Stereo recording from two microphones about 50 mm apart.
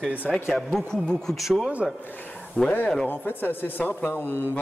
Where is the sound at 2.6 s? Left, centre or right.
Left.